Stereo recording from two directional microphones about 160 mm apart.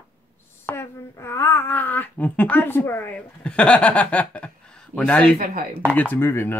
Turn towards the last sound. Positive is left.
turn(degrees=15)  # may be behind; listen again after turning